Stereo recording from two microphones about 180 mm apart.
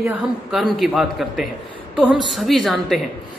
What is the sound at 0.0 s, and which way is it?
A woman's voice, 5° right (ahead or behind).